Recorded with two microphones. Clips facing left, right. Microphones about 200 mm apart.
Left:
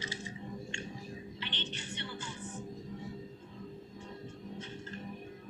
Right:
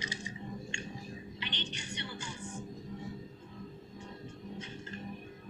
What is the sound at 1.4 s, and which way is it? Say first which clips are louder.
Music: right 1 dB; 15° right (ahead or behind).